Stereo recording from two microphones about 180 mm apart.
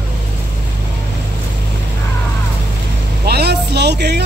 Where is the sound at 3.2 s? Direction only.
65° right (ahead or behind).